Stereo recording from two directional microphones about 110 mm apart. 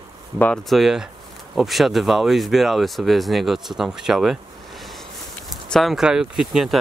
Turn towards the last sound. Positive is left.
turn(degrees=-5)  # may be behind; listen again after turning